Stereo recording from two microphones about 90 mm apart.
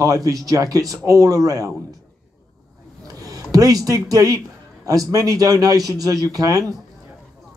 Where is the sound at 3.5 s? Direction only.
40° right (ahead or behind).